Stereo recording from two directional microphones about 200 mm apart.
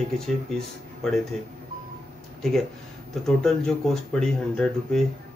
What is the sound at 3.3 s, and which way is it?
Speech, centre (ahead or behind).